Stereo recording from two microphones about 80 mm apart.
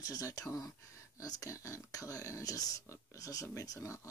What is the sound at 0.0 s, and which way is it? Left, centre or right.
Speech, left.